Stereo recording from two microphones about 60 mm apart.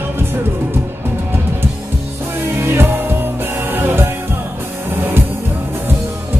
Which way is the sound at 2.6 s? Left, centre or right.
Right.